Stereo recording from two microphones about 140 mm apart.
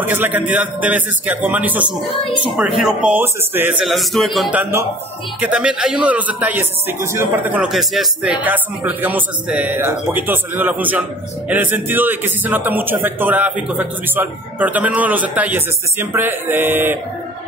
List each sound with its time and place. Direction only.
0.0 s a man's voice: 15° right (ahead or behind)
3.8 s a man's voice: centre (ahead or behind)
4.5 s a man's voice: 15° right (ahead or behind)
7.7 s a man's voice: centre (ahead or behind)